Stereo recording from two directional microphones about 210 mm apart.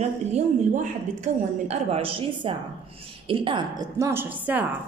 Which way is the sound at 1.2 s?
30° right (ahead or behind).